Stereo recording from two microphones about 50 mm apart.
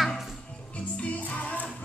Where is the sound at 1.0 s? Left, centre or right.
Left.